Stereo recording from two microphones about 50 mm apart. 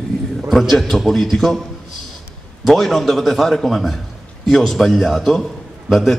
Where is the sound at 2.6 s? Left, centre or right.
Centre.